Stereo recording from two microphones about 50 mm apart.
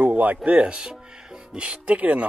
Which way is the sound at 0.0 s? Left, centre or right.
Right.